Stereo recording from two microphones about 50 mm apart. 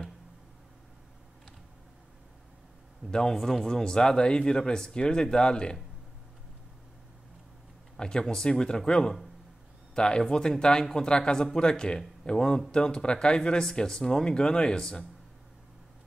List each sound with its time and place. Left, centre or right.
3.1 s a man's voice: centre
8.0 s a man's voice: centre